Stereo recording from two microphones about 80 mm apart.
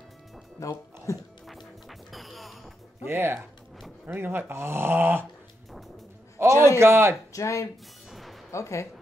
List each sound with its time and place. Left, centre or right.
0.6 s speech: left
1.9 s music: centre
3.1 s speech: right
6.3 s music: right
6.8 s a man's voice: right
7.3 s speech: left
8.1 s music: centre
8.5 s speech: left